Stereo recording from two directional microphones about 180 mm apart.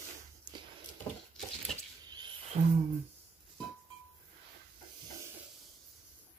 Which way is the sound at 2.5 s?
45° right (ahead or behind).